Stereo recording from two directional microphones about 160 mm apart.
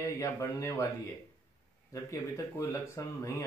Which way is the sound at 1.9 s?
20° left (ahead or behind).